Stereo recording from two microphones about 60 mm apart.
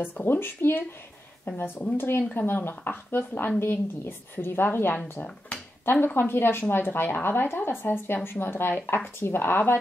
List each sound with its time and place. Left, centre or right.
0.0 s a woman's voice: left
2.0 s a woman's voice: left